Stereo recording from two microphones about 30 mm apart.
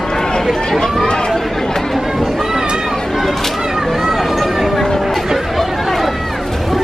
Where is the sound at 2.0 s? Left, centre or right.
Centre.